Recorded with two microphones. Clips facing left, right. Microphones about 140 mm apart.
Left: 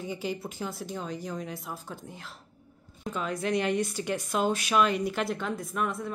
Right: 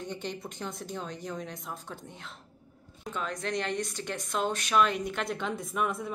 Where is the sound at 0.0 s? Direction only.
5° left (ahead or behind).